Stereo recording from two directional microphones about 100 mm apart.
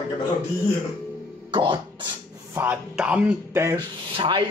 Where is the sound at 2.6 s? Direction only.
15° right (ahead or behind).